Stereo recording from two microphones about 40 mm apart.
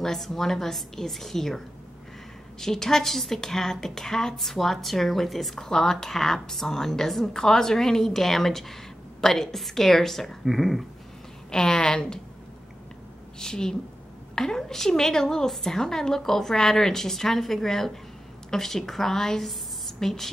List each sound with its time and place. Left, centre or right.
0.0 s a woman's voice: centre
2.6 s a woman's voice: centre
5.6 s a woman's voice: centre
11.5 s a woman's voice: centre
13.4 s a woman's voice: centre